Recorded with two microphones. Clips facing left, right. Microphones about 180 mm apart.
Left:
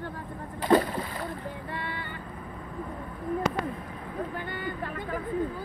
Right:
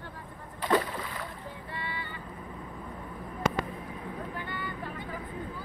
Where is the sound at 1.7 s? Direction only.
55° left (ahead or behind).